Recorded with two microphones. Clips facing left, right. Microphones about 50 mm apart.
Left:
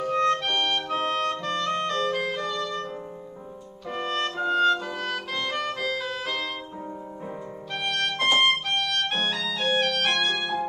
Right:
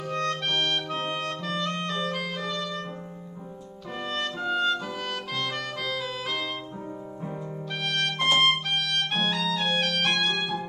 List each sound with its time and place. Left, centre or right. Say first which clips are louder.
0.0 s clarinet: left 5 dB; centre
3.9 s music: left 3 dB; centre
7.8 s music: left 1 dB; centre